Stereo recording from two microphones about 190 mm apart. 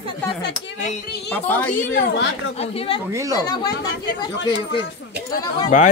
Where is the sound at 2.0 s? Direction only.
65° left (ahead or behind).